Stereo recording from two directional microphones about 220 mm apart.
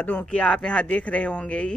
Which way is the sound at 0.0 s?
5° left (ahead or behind).